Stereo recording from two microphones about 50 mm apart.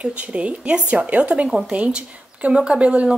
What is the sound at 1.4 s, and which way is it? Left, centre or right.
Speech, centre.